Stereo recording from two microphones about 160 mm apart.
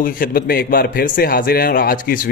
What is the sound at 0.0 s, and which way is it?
A man's voice, 65° left (ahead or behind).